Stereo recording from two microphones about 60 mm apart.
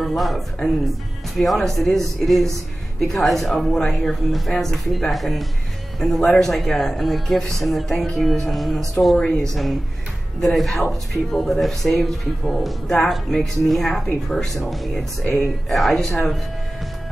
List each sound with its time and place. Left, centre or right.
0.0 s speech: centre
9.2 s a woman's voice: centre
10.4 s speech: centre